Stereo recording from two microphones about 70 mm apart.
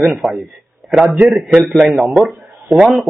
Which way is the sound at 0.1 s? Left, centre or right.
Centre.